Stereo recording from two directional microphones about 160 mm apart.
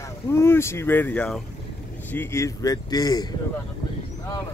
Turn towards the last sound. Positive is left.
turn(degrees=25)  # may be behind; listen again after turning